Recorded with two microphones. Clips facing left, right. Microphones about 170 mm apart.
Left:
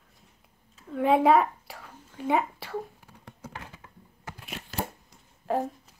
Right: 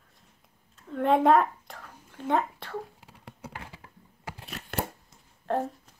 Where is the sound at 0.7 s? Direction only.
5° left (ahead or behind).